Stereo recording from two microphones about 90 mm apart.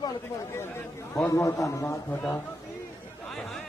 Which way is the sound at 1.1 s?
35° left (ahead or behind).